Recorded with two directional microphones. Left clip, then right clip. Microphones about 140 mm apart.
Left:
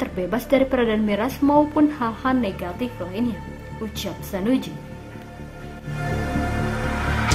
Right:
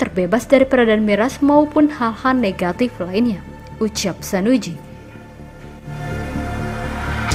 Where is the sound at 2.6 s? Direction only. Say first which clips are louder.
Right 8 dB; 55° right (ahead or behind); by 4.7 s 40° right (ahead or behind).